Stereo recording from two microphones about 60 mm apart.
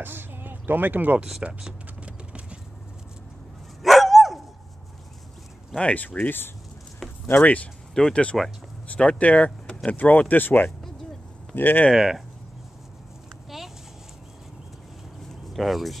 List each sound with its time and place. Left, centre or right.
0.0 s speech: right
1.4 s typing: centre
3.8 s dog: centre
5.8 s speech: left
7.0 s a sound: centre
7.4 s speech: left
7.9 s speech: centre
8.8 s speech: left
11.9 s speech: centre
15.5 s speech: centre